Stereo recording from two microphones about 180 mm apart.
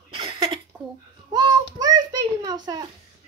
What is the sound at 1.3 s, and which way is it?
A child's voice, 25° right (ahead or behind).